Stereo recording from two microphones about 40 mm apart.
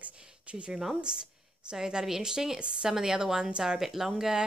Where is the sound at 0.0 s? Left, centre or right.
Right.